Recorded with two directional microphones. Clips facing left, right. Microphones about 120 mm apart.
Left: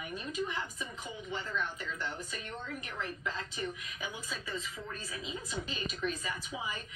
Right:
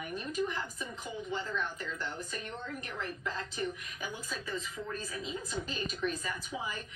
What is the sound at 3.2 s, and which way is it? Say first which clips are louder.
Speech: right 3 dB; 45° right (ahead or behind).